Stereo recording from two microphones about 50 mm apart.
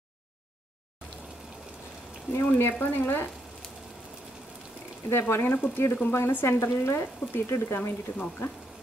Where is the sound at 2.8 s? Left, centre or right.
Left.